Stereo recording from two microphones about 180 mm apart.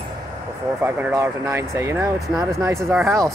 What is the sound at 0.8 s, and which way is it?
Speech, 15° right (ahead or behind).